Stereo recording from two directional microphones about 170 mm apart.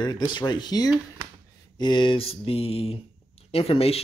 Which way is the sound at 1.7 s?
25° left (ahead or behind).